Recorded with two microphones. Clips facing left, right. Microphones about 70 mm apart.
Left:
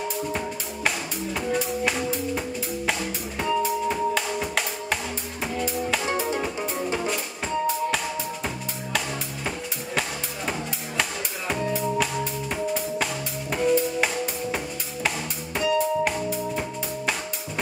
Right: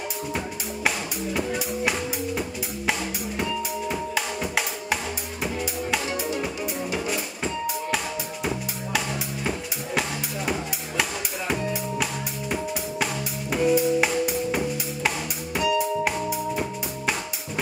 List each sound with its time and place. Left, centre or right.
4.1 s music: centre
6.0 s music: left
11.0 s music: centre
15.0 s music: centre